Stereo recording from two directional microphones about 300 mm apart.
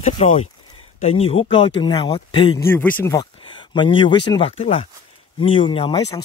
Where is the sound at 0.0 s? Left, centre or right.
Left.